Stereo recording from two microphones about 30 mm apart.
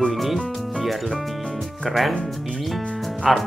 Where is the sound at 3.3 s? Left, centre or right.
Centre.